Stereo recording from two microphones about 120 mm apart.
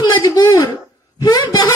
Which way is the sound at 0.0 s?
30° left (ahead or behind).